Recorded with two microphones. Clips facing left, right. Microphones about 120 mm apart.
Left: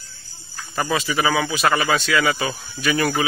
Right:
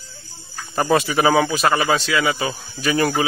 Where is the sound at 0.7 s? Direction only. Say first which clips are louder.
Right 4 dB; 40° right (ahead or behind).